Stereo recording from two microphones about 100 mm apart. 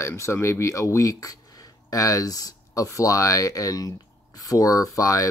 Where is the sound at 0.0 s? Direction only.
30° left (ahead or behind).